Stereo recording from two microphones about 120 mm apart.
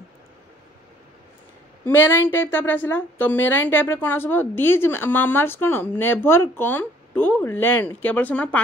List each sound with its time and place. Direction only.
1.9 s a woman's voice: 20° left (ahead or behind)